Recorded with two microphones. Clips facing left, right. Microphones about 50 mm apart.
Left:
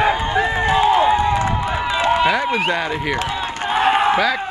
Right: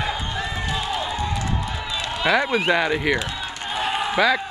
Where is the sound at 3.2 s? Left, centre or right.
Left.